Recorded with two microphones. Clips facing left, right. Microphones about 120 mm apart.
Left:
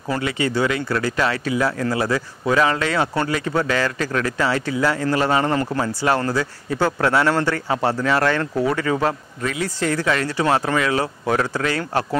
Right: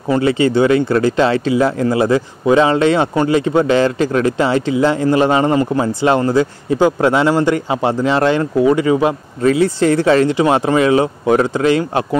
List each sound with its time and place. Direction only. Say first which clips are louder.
0.1 s speech: right 9 dB; 30° right (ahead or behind)
9.4 s speech: right 12 dB; 30° right (ahead or behind)